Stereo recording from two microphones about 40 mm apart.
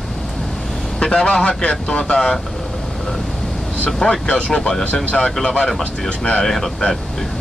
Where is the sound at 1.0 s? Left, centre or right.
Left.